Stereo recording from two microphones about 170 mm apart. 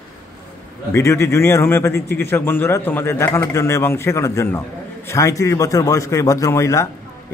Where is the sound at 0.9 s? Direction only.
15° left (ahead or behind).